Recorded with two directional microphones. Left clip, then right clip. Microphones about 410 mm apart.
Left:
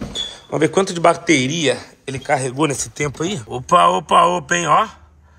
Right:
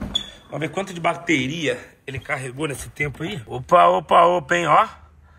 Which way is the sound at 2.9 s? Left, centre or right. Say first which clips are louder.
Left 4 dB; left.